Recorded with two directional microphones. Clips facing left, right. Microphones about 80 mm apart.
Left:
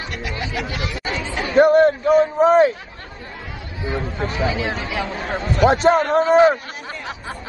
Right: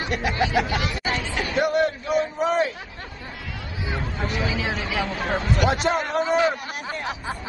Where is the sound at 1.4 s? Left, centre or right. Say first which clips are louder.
Left 9 dB; left.